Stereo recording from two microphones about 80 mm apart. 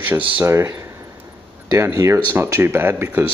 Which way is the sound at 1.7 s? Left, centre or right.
Right.